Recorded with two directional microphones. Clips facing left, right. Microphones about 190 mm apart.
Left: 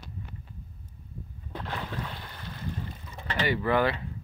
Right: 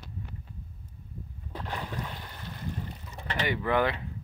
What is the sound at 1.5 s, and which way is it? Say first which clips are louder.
Boat: left 1 dB; 10° right (ahead or behind).